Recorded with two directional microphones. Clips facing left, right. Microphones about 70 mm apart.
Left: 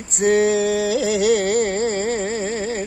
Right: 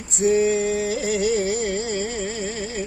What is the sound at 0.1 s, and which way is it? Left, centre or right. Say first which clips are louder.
Music: left 2 dB; left.